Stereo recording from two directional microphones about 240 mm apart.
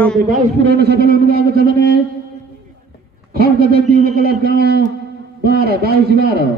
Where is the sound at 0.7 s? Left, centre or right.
Right.